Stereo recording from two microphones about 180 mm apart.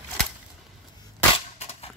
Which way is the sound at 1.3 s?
35° left (ahead or behind).